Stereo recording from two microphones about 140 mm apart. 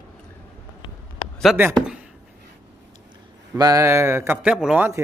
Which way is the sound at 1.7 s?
5° right (ahead or behind).